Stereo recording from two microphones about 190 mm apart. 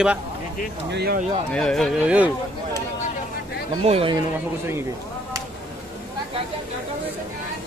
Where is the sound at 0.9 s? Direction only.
60° right (ahead or behind).